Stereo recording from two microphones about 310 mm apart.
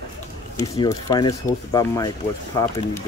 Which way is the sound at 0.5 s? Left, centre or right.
Centre.